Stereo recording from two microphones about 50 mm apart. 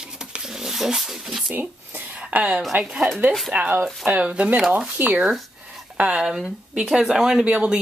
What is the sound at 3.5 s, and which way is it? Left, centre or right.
Speech, right.